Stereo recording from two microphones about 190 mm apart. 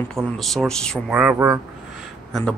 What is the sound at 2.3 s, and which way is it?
Speech, centre (ahead or behind).